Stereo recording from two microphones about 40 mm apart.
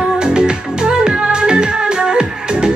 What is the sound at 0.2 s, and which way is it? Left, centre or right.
Music, right.